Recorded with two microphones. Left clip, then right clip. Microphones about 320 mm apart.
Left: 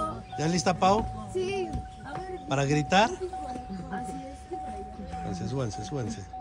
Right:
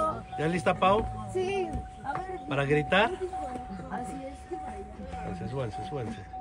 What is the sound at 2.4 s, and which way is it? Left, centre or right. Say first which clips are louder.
Speech: even; centre.